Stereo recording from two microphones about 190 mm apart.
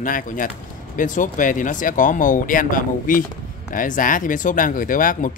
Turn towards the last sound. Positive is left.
turn(degrees=45)  # may be behind; listen again after turning